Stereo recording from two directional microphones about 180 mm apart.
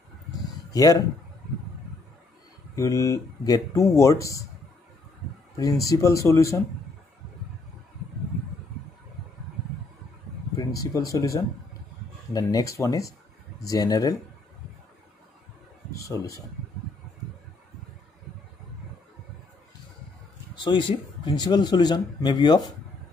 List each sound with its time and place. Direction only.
0.3 s a sound: 20° left (ahead or behind)
2.7 s speech: 20° left (ahead or behind)
5.6 s speech: 20° left (ahead or behind)
10.5 s a man's voice: 20° left (ahead or behind)
15.9 s speech: 20° left (ahead or behind)
20.5 s a man's voice: 25° left (ahead or behind)